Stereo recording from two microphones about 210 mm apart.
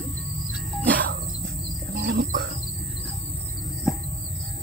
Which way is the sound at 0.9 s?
45° right (ahead or behind).